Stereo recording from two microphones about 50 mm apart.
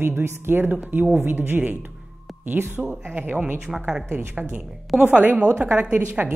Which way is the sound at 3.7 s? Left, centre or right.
Centre.